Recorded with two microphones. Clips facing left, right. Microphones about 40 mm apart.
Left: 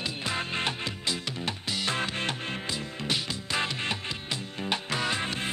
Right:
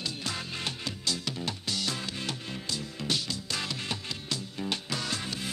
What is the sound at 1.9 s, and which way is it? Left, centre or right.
Music, left.